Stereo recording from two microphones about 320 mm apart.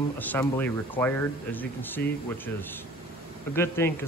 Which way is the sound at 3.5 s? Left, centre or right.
Centre.